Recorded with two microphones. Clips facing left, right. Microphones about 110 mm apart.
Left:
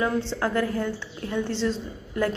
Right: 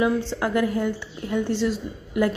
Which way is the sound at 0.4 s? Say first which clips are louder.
Right 2 dB; 15° right (ahead or behind).